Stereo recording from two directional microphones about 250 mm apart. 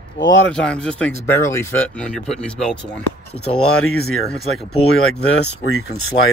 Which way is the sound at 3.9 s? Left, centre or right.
Left.